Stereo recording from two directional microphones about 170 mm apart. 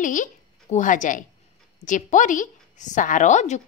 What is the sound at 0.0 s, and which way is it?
A woman's voice, 50° left (ahead or behind).